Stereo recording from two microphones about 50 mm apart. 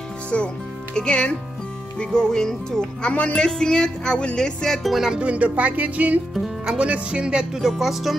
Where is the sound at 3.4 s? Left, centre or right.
Centre.